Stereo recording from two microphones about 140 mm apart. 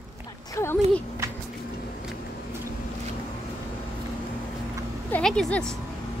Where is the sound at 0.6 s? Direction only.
20° left (ahead or behind).